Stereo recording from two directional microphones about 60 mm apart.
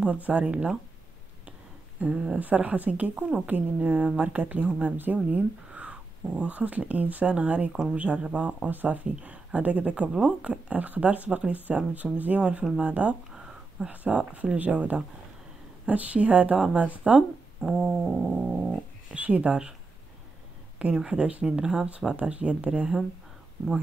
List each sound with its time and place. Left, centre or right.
0.0 s speech: right
2.0 s speech: centre
13.3 s a sound: centre
13.8 s speech: right
18.0 s dog: centre
19.2 s speech: right
20.8 s speech: centre